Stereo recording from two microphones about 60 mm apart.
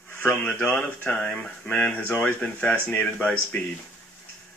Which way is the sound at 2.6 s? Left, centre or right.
Left.